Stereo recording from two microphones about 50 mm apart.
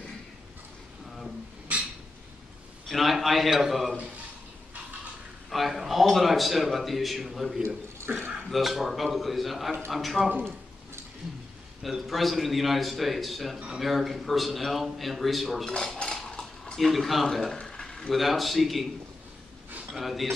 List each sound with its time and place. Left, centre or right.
1.7 s a sound: right
2.9 s a man's voice: centre
5.5 s a man's voice: centre
7.6 s speech: right
8.5 s a man's voice: centre
11.8 s a man's voice: centre
16.0 s cutlery: centre
16.7 s speech: centre
18.1 s a man's voice: centre
19.9 s a man's voice: centre